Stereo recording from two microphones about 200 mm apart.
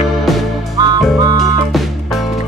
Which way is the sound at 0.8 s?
20° right (ahead or behind).